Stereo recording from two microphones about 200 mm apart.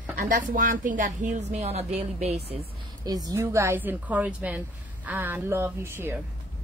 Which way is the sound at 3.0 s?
20° right (ahead or behind).